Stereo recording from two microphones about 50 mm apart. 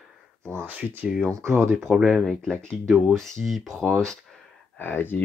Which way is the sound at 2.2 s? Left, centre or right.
Centre.